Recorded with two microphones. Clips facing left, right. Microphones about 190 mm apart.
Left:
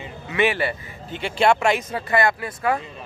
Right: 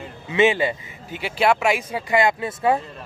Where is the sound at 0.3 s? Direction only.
20° right (ahead or behind).